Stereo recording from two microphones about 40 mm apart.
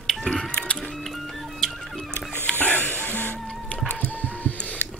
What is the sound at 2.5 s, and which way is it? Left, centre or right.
Music, left.